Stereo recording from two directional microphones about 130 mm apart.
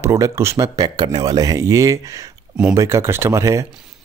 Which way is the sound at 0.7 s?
35° right (ahead or behind).